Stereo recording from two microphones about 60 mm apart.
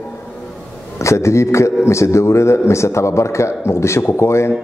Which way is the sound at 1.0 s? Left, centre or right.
Left.